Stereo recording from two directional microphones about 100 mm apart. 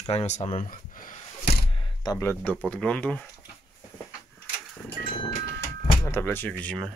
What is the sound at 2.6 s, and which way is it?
Speech, 10° left (ahead or behind).